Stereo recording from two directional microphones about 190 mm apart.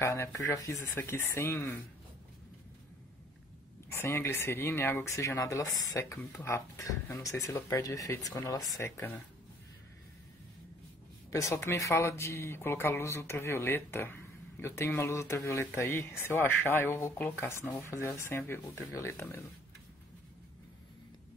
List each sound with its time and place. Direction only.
0.0 s speech: 15° left (ahead or behind)
3.9 s speech: 10° left (ahead or behind)
11.2 s speech: 15° left (ahead or behind)